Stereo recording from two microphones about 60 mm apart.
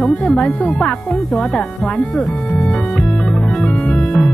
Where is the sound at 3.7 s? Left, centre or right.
Left.